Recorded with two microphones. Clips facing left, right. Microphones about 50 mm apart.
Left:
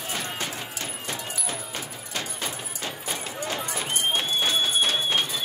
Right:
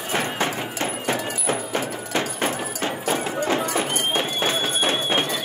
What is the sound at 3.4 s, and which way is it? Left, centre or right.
Clip-clop, right.